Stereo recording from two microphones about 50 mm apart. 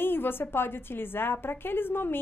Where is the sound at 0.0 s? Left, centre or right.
Left.